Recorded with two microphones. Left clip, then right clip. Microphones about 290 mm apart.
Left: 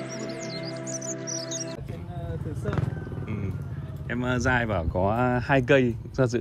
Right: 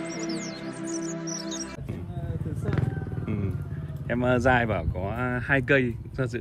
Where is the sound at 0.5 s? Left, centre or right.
Centre.